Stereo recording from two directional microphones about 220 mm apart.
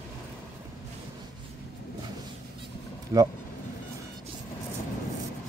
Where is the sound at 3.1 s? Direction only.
15° right (ahead or behind).